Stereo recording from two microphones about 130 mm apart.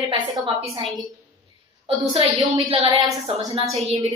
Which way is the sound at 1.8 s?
45° right (ahead or behind).